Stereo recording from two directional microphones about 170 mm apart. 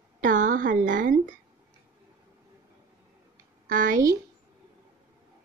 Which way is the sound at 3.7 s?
50° right (ahead or behind).